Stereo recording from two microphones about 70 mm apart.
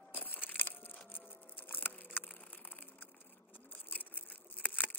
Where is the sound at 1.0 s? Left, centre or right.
Left.